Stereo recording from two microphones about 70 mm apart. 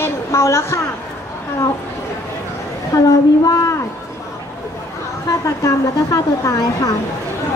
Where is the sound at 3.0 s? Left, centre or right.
Left.